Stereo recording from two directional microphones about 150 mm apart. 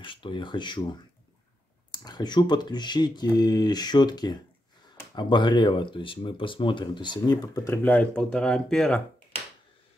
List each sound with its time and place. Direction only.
0.0 s speech: 35° left (ahead or behind)
1.9 s speech: 30° left (ahead or behind); by 9.0 s 5° left (ahead or behind)